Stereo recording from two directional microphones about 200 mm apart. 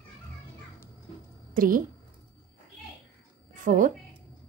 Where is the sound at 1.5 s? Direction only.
45° right (ahead or behind).